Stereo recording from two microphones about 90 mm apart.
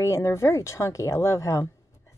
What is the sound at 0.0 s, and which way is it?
Speech, 30° left (ahead or behind).